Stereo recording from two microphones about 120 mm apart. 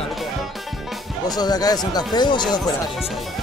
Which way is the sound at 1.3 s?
35° left (ahead or behind).